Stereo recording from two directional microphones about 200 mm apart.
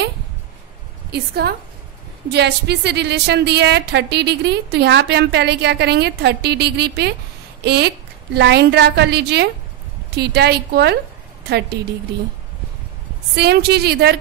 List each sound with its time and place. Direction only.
1.1 s a woman's voice: 55° right (ahead or behind)
13.4 s a woman's voice: 55° right (ahead or behind)